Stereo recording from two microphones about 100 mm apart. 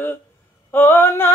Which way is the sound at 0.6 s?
20° left (ahead or behind).